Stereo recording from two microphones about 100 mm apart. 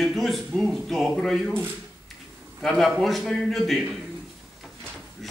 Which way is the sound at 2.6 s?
Centre (ahead or behind).